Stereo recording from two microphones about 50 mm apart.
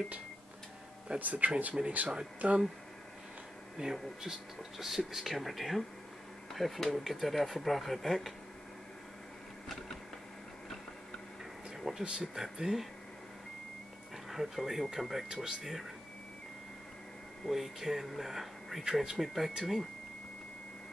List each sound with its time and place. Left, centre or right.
1.2 s speech: right
3.7 s speech: centre
12.0 s speech: centre
12.4 s speech: centre
14.3 s speech: centre
17.5 s speech: centre